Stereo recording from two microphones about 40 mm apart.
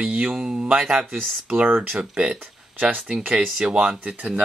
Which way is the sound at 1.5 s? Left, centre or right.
Right.